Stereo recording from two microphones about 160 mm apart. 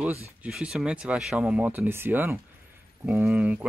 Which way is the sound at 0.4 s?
5° right (ahead or behind).